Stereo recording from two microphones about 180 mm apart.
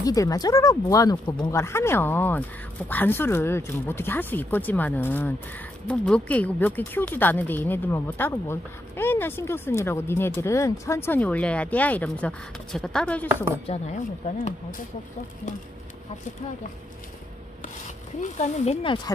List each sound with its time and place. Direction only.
0.0 s speech: 20° left (ahead or behind)
13.7 s speech: 40° left (ahead or behind)
18.2 s speech: 40° left (ahead or behind)